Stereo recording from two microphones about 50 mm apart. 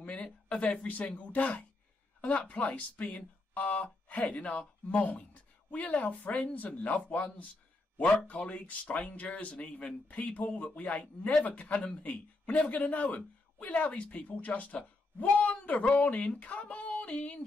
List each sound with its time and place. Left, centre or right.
0.0 s speech: left